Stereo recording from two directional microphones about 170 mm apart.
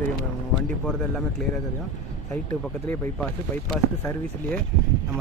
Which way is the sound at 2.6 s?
5° left (ahead or behind).